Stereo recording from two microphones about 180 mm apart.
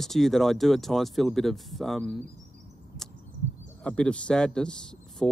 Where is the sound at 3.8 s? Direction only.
5° left (ahead or behind).